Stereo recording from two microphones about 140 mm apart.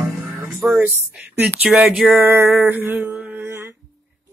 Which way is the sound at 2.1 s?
20° right (ahead or behind).